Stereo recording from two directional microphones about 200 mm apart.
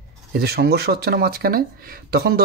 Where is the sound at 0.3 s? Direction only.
50° right (ahead or behind).